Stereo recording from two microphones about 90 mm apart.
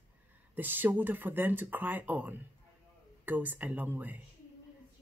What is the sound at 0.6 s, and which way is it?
A woman's voice, 20° right (ahead or behind).